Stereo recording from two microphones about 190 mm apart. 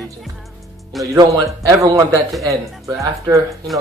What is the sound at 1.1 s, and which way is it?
Speech, 20° right (ahead or behind).